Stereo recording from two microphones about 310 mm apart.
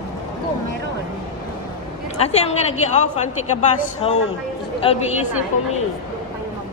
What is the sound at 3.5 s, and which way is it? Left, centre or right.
Speech, left.